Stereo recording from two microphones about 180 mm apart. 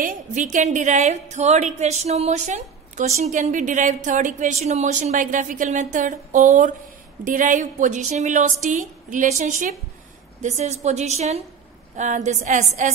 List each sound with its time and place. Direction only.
0.0 s a woman's voice: 45° right (ahead or behind)